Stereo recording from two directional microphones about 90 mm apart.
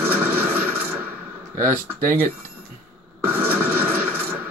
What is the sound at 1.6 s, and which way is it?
Speech, 25° right (ahead or behind).